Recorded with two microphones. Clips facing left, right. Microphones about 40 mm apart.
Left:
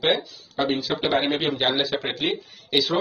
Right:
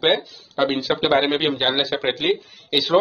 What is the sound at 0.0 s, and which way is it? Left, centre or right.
Speech, right.